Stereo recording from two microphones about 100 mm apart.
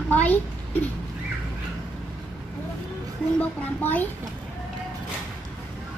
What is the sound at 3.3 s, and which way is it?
Speech, 15° left (ahead or behind).